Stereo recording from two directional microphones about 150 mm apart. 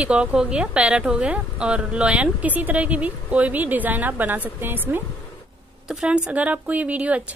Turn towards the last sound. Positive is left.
turn(degrees=-10)  # may be behind; listen again after turning